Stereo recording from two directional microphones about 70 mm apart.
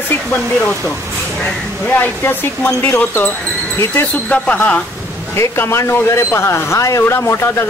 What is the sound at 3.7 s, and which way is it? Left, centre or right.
Speech, left.